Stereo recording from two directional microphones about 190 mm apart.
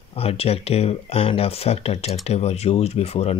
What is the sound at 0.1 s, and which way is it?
Speech, 30° left (ahead or behind).